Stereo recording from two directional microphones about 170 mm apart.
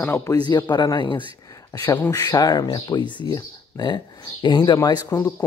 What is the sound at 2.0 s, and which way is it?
Speech, 20° left (ahead or behind).